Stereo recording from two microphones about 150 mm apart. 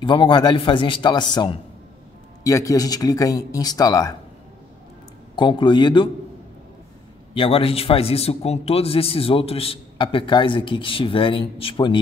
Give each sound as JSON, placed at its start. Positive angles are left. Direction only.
{"t": 0.0, "sound": "a man's voice", "side_deg": 35}
{"t": 5.3, "sound": "a man's voice", "side_deg": 30}
{"t": 7.3, "sound": "a man's voice", "side_deg": 40}